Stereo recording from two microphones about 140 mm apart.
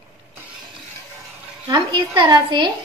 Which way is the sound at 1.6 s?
35° right (ahead or behind).